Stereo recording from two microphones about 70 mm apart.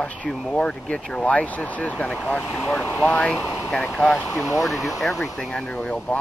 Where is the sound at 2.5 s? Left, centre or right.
Centre.